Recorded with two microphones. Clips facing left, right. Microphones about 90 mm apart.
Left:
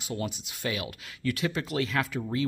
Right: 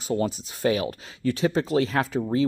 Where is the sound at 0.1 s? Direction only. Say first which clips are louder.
Right 8 dB; 35° right (ahead or behind).